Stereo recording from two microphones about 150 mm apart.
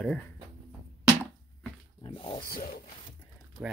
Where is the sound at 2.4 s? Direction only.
75° left (ahead or behind).